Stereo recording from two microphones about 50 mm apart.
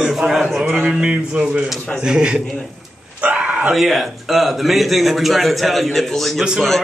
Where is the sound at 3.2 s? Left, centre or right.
Right.